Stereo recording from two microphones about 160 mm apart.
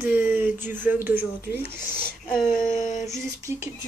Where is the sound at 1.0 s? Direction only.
10° right (ahead or behind).